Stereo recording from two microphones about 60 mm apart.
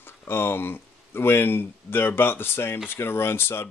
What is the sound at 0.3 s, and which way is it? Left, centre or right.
Speech, left.